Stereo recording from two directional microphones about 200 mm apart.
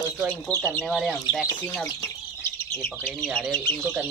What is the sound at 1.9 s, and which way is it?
Bird, 15° left (ahead or behind).